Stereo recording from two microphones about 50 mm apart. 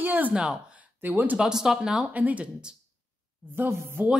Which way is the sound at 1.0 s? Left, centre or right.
Right.